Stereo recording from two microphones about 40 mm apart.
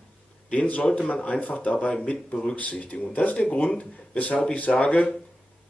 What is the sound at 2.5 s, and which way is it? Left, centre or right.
A man's voice, left.